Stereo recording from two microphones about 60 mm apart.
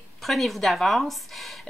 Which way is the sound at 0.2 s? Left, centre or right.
Centre.